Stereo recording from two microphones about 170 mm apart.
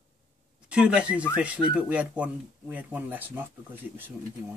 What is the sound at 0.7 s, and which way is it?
Speech, 5° right (ahead or behind).